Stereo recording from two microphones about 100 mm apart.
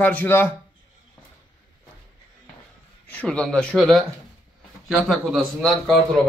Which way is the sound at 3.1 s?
10° left (ahead or behind).